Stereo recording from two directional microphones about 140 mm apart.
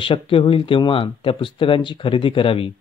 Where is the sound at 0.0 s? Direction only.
40° left (ahead or behind).